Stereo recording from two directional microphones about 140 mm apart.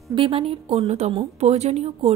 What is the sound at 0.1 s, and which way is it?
A woman's voice, 40° right (ahead or behind).